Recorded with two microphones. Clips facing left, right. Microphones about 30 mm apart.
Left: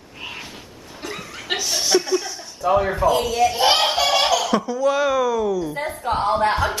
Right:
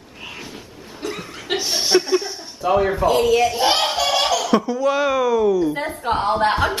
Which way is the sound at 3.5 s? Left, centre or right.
Centre.